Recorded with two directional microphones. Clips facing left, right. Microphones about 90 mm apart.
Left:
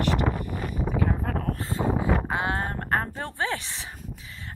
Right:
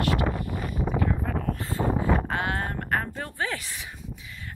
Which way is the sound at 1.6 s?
20° left (ahead or behind).